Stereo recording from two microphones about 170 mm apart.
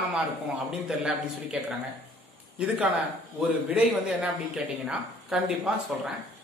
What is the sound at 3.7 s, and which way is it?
Speech, 5° right (ahead or behind).